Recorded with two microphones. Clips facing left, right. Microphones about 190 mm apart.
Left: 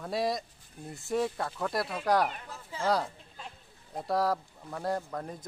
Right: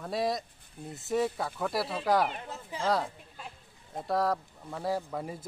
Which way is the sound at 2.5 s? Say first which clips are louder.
Right 2 dB; 20° right (ahead or behind).